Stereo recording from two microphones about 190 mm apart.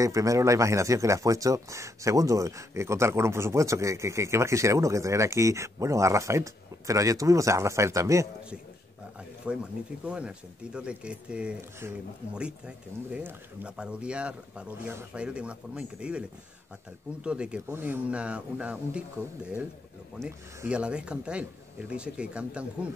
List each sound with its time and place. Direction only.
0.0 s speech: 15° right (ahead or behind)
9.5 s speech: 5° right (ahead or behind)
20.2 s speech: 5° right (ahead or behind)